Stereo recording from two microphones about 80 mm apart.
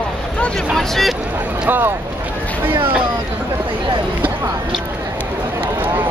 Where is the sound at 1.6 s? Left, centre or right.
Right.